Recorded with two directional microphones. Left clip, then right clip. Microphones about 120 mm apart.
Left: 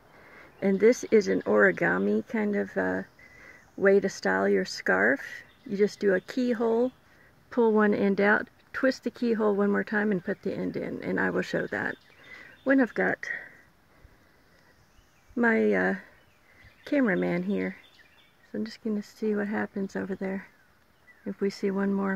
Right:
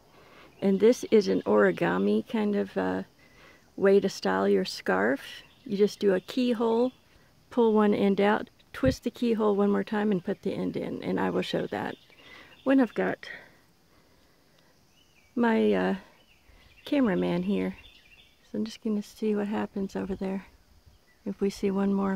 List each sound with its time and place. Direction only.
0.3 s speech: 35° right (ahead or behind)
12.3 s a sound: 40° right (ahead or behind)
12.9 s speech: 20° right (ahead or behind)
15.3 s speech: 30° right (ahead or behind)
19.3 s speech: 25° right (ahead or behind)